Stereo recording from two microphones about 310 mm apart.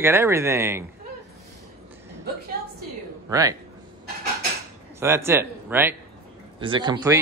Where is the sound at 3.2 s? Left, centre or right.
Centre.